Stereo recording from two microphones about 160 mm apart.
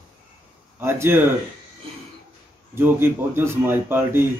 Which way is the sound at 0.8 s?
15° right (ahead or behind).